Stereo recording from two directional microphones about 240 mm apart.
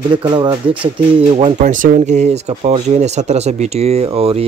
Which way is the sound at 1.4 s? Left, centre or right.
Right.